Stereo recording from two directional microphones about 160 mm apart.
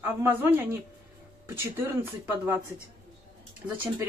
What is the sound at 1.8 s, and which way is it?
Speech, 15° right (ahead or behind).